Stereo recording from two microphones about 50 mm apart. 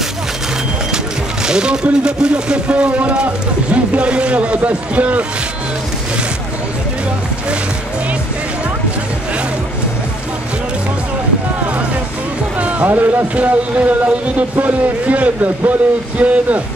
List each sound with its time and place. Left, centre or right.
1.4 s speech: centre
12.5 s music: right
12.8 s speech: right